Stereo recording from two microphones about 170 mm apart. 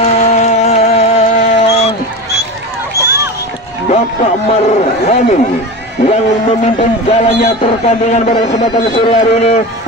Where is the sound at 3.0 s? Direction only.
70° left (ahead or behind).